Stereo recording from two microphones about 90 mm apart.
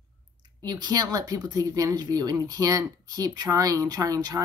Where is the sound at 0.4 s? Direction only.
55° right (ahead or behind).